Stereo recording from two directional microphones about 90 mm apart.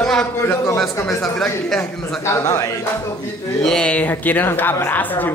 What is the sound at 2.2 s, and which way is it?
Speech, 35° left (ahead or behind).